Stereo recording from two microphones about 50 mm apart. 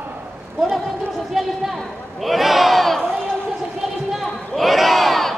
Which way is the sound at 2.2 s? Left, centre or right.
Centre.